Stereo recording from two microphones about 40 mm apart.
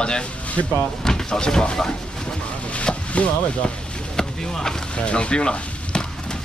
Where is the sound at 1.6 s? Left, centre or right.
Left.